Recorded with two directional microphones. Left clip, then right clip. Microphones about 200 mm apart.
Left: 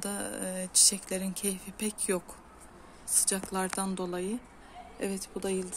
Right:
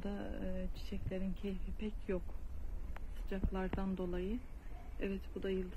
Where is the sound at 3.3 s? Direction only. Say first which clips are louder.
Left 6 dB; 20° left (ahead or behind).